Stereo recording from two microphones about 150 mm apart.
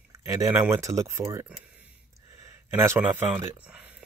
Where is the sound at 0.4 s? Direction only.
20° right (ahead or behind).